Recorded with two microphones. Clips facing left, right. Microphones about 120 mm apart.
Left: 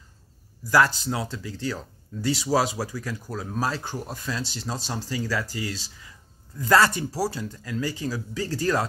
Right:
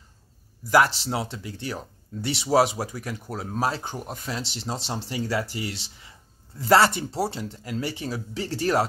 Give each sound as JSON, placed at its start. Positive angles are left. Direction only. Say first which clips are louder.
{"t": 0.7, "sound": "speech", "louder": "right 1 dB", "side_deg": -20}